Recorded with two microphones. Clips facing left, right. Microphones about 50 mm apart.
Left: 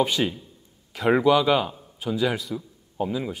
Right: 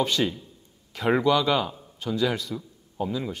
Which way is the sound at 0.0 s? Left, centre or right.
Centre.